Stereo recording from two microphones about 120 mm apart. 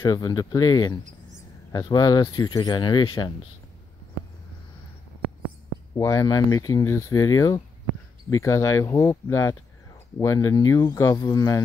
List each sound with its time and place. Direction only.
0.0 s speech: 35° left (ahead or behind)
5.9 s speech: 25° left (ahead or behind)